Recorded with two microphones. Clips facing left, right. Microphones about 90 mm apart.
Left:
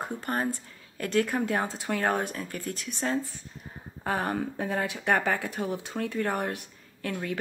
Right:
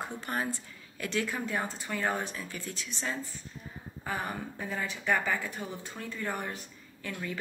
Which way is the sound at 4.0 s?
65° left (ahead or behind).